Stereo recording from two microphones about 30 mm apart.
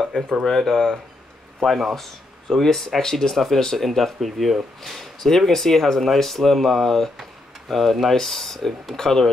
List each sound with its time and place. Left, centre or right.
0.2 s speech: left
0.5 s speech: centre
3.3 s speech: centre